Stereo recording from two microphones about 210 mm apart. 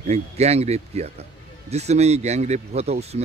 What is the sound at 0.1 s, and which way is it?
Speech, 30° right (ahead or behind).